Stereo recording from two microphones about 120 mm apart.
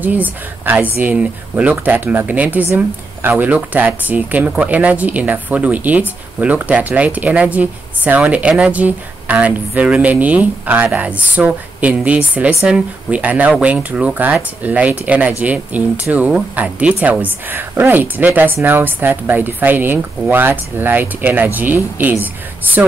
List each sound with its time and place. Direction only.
0.0 s speech: 15° right (ahead or behind)